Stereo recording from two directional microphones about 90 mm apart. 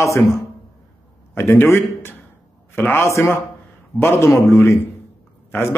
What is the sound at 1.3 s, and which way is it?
A man's voice, 25° left (ahead or behind).